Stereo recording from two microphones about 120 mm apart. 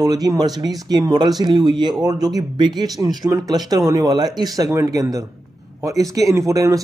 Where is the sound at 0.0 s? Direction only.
30° right (ahead or behind).